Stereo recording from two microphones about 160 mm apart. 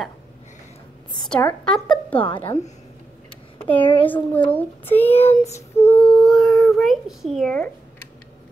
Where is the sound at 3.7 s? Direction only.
10° left (ahead or behind).